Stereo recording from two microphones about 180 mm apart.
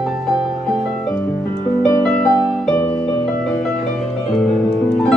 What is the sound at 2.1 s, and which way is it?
Music, 5° left (ahead or behind).